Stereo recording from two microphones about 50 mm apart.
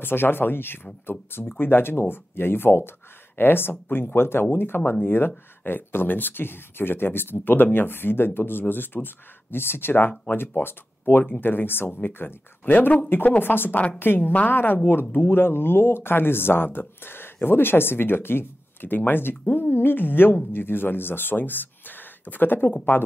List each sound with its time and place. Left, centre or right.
0.0 s speech: left